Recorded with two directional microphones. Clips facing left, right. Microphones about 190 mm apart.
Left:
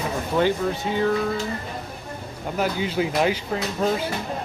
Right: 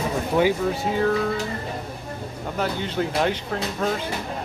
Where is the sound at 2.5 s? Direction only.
5° left (ahead or behind).